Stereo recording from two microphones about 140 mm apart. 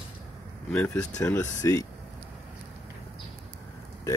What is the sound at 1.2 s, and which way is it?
Speech, 20° left (ahead or behind).